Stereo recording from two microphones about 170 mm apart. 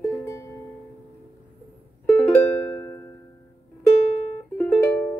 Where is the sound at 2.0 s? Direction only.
10° left (ahead or behind).